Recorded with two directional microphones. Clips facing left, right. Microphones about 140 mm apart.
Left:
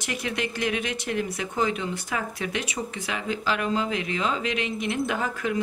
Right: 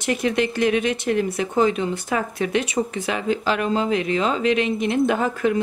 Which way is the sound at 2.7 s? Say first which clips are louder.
Right 8 dB; 50° right (ahead or behind).